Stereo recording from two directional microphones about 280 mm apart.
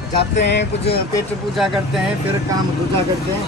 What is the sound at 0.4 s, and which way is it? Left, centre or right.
Speech, left.